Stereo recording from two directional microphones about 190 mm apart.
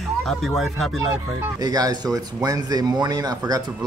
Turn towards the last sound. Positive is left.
turn(degrees=-20)  # may be behind; listen again after turning